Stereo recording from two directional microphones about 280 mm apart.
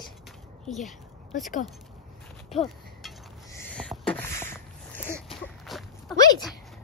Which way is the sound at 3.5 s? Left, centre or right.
Centre.